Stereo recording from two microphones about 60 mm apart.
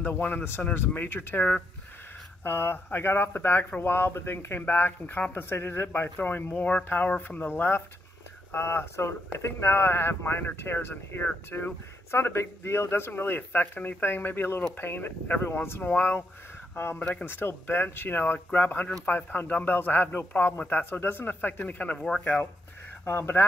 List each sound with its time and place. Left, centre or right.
0.2 s speech: left
2.4 s speech: left
7.4 s speech: left
15.6 s speech: left
23.0 s speech: left